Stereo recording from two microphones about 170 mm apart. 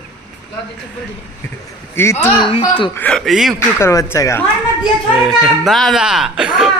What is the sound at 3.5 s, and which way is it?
Speech, 15° left (ahead or behind).